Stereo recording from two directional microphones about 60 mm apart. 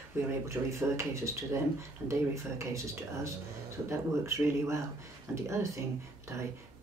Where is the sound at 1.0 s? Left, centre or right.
Right.